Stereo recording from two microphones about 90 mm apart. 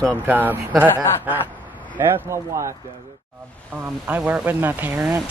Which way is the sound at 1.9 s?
30° right (ahead or behind).